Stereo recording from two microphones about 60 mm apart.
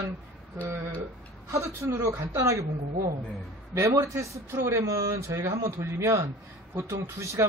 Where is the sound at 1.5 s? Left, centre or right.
Right.